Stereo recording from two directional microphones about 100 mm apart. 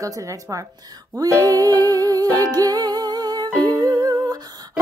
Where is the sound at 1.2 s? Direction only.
35° right (ahead or behind).